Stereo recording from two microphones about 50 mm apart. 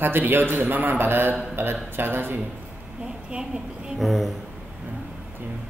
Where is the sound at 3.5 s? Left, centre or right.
Right.